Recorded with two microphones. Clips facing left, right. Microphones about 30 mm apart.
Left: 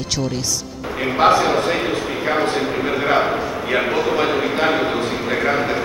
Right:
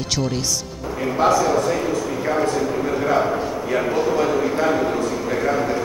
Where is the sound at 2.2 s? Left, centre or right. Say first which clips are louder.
Left 2 dB; left.